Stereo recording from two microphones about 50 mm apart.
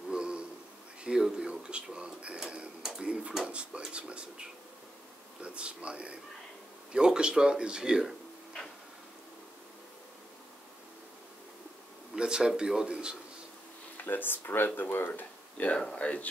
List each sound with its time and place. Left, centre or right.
0.1 s a sound: centre
1.0 s speech: centre
12.2 s speech: centre
14.0 s speech: left
15.5 s speech: left